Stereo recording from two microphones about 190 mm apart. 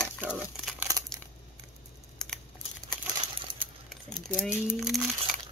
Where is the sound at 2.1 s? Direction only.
5° left (ahead or behind).